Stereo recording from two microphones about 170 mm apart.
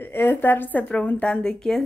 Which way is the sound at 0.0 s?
10° left (ahead or behind).